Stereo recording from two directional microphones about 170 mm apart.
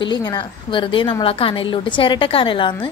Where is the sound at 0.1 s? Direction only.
25° left (ahead or behind).